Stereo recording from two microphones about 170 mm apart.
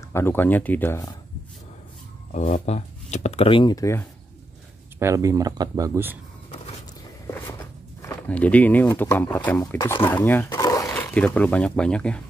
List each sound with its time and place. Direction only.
0.1 s speech: 15° left (ahead or behind)
2.3 s speech: 40° left (ahead or behind); by 4.0 s 20° left (ahead or behind)
4.9 s speech: 15° right (ahead or behind)
8.0 s speech: 10° left (ahead or behind)
10.5 s roaring cats: 20° left (ahead or behind)
11.0 s speech: 10° left (ahead or behind)